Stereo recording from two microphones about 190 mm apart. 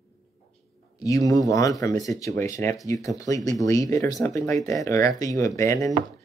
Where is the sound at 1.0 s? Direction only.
20° left (ahead or behind).